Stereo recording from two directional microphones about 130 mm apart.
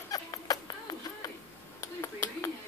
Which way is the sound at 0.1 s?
25° left (ahead or behind).